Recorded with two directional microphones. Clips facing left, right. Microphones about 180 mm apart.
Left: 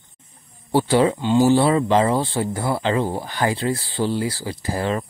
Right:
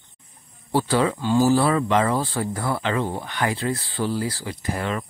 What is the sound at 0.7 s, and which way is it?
Speech, 30° left (ahead or behind).